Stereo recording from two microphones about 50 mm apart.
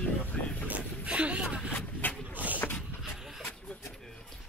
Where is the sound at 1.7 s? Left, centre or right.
Left.